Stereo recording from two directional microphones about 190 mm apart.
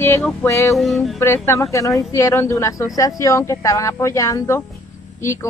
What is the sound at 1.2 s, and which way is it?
Speech, 15° left (ahead or behind).